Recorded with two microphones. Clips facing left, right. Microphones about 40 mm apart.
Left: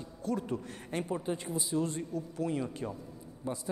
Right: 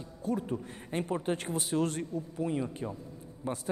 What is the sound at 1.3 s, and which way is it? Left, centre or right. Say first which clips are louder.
Speech: right 2 dB; right.